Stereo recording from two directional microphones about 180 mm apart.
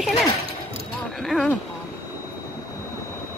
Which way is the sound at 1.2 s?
Centre (ahead or behind).